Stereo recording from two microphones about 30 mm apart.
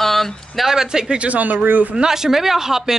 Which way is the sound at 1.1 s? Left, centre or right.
Right.